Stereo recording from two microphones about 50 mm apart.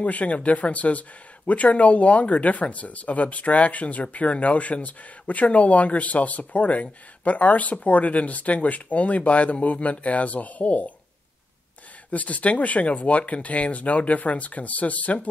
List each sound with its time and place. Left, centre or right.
0.0 s speech: left
12.1 s speech: left